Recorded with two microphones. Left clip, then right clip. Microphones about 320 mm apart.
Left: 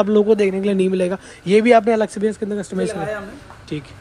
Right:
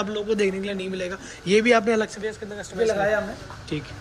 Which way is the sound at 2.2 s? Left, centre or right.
Left.